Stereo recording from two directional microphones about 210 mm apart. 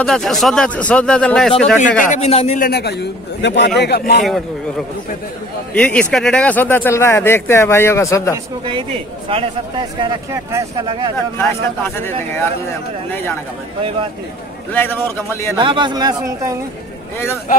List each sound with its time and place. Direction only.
0.0 s speech: centre (ahead or behind)
2.0 s a man's voice: 35° left (ahead or behind); by 4.2 s 50° left (ahead or behind)
4.2 s speech: centre (ahead or behind)
9.3 s speech: 25° right (ahead or behind)
11.3 s speech: 10° left (ahead or behind)
14.7 s speech: 10° left (ahead or behind)
15.5 s speech: 25° right (ahead or behind)